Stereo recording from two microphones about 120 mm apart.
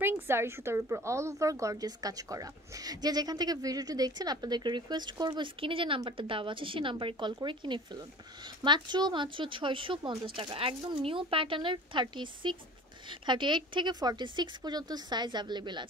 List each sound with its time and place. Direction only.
0.0 s a woman's voice: 20° right (ahead or behind); by 15.9 s 40° right (ahead or behind)